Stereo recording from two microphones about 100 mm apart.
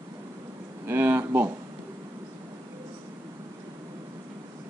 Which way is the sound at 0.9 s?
20° right (ahead or behind).